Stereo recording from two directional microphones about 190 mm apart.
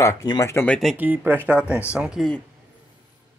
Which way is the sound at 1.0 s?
10° right (ahead or behind).